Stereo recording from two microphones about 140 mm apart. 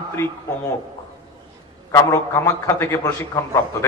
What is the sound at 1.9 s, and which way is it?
A man's voice, 20° left (ahead or behind).